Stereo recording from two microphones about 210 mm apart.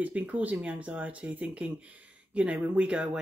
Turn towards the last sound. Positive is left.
turn(degrees=-5)  # may be behind; listen again after turning